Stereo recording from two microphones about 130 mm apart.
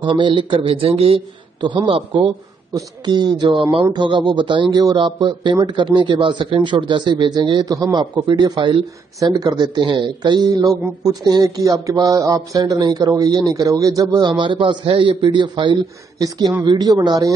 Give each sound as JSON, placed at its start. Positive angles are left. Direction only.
{"t": 0.0, "sound": "speech", "side_deg": -40}